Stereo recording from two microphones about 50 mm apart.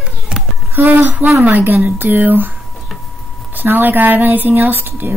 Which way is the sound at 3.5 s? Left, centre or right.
Right.